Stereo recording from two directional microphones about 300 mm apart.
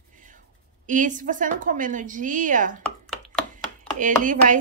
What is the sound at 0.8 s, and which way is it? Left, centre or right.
Speech, right.